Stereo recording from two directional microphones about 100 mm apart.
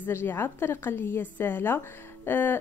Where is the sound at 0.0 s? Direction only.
20° left (ahead or behind).